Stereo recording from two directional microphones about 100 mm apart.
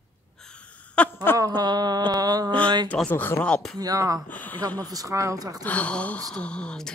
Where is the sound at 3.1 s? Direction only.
20° left (ahead or behind).